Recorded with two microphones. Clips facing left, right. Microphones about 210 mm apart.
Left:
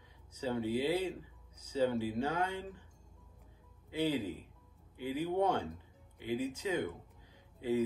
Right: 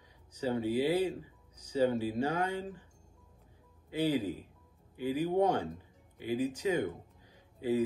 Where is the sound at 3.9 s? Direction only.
10° right (ahead or behind).